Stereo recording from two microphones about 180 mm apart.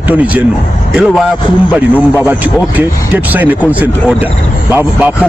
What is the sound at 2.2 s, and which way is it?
A man's voice, 10° right (ahead or behind).